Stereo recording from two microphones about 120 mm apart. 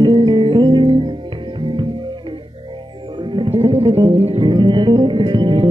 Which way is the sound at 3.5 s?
55° right (ahead or behind).